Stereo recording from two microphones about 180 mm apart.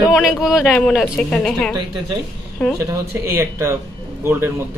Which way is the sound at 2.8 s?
15° right (ahead or behind).